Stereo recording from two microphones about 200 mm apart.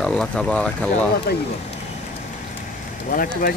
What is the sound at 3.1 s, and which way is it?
Speech, 45° left (ahead or behind).